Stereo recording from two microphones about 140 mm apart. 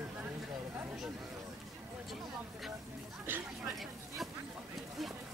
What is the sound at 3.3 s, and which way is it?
Speech, 15° right (ahead or behind).